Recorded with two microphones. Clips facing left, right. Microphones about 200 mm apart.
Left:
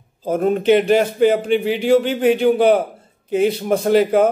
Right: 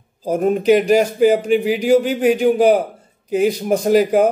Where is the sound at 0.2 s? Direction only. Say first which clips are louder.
Right 1 dB; 10° right (ahead or behind).